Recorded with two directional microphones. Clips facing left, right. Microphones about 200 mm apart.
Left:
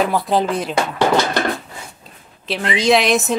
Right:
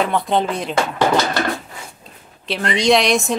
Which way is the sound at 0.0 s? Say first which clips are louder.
Left 1 dB; 5° left (ahead or behind).